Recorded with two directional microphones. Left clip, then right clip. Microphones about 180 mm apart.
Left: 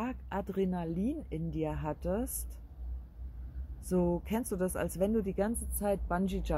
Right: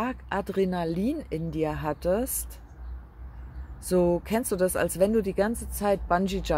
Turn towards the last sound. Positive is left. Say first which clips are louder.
# right 9 dB
turn(degrees=-15)  # may be behind; listen again after turning